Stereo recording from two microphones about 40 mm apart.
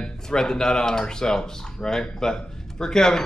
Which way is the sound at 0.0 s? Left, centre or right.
Centre.